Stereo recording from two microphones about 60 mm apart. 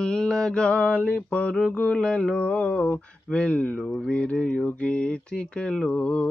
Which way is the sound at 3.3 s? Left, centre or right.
Left.